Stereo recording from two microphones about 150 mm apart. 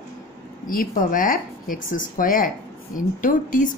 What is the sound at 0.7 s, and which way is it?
A woman's voice, 65° left (ahead or behind).